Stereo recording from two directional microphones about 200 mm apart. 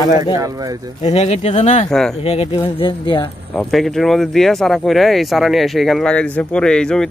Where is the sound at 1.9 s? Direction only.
5° left (ahead or behind).